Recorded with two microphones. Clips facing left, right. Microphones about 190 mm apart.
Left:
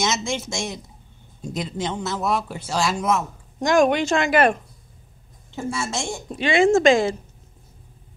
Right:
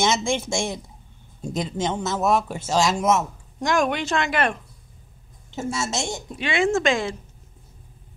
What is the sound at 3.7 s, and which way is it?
Speech, centre (ahead or behind).